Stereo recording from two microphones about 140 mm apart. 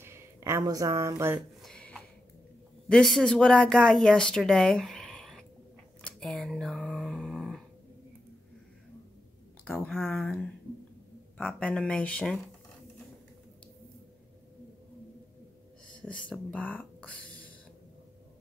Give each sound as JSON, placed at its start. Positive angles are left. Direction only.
{"t": 0.0, "sound": "speech", "side_deg": -20}
{"t": 1.6, "sound": "a sound", "side_deg": 5}
{"t": 2.9, "sound": "speech", "side_deg": 5}
{"t": 6.0, "sound": "a sound", "side_deg": 5}
{"t": 9.8, "sound": "speech", "side_deg": 0}
{"t": 16.3, "sound": "speech", "side_deg": 10}